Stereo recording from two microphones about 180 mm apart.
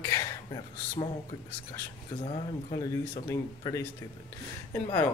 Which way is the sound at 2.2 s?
25° left (ahead or behind).